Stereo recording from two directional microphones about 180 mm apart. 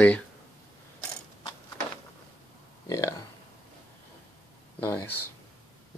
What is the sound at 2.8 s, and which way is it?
Speech, 20° left (ahead or behind).